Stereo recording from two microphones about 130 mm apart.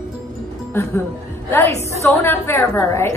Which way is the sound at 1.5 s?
20° left (ahead or behind).